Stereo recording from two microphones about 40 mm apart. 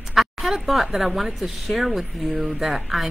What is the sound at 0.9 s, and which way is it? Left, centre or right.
Speech, centre.